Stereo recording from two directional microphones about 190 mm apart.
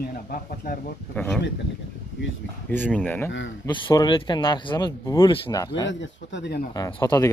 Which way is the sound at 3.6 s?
25° left (ahead or behind).